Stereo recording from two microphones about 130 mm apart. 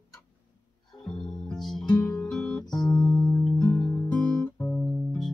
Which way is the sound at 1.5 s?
5° left (ahead or behind).